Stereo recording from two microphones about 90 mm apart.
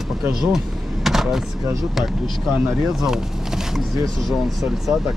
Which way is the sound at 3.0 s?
5° right (ahead or behind).